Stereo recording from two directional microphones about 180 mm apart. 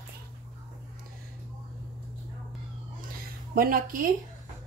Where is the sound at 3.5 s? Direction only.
55° right (ahead or behind).